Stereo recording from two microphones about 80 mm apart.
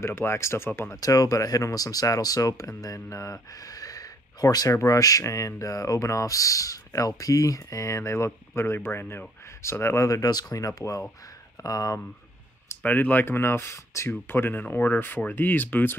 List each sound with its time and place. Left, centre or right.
0.0 s speech: left
1.0 s speech: left
12.8 s speech: left